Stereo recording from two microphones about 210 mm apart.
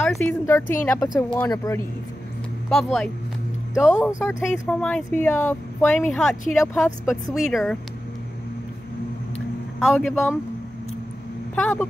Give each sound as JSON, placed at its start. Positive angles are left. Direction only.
{"t": 0.0, "sound": "speech", "side_deg": 5}
{"t": 2.7, "sound": "speech", "side_deg": 5}
{"t": 9.8, "sound": "speech", "side_deg": 0}
{"t": 11.5, "sound": "speech", "side_deg": 5}